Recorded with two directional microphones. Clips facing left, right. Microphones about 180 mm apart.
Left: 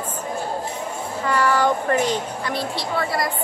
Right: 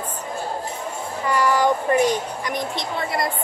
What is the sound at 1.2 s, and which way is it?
Speech, 15° right (ahead or behind).